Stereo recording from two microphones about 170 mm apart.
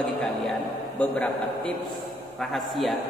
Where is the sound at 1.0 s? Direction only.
5° left (ahead or behind).